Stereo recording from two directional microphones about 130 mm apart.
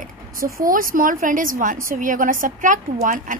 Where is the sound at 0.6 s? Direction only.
90° right.